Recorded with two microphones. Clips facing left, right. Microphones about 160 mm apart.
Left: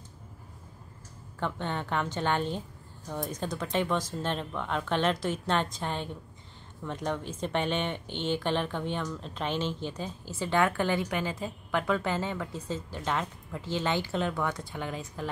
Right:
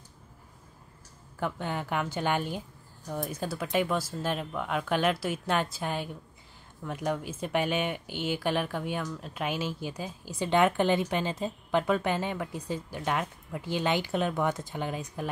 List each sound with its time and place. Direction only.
1.4 s speech: 10° right (ahead or behind)